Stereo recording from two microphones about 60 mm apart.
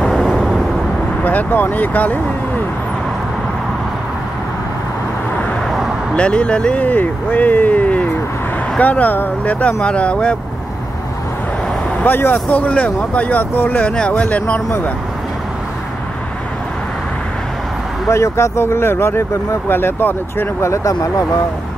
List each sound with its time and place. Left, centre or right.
0.0 s vehicle: centre
1.2 s speech: left
6.1 s speech: centre
12.0 s speech: left
13.9 s speech: centre
18.1 s speech: left
20.6 s speech: left